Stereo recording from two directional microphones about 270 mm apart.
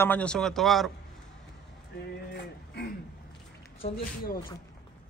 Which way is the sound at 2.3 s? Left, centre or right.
Left.